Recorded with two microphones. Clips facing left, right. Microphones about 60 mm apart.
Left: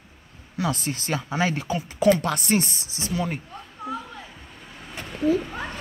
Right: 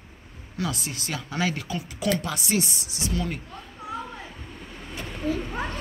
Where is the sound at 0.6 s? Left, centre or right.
Left.